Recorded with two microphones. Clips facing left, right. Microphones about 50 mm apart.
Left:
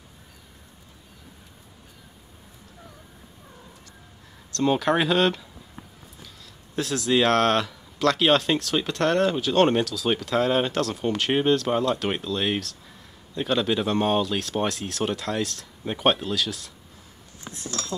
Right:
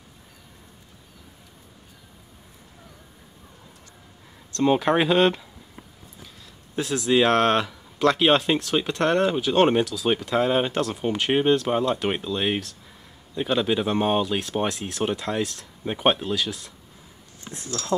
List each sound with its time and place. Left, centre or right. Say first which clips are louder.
4.5 s speech: right 2 dB; right
6.7 s speech: right 1 dB; centre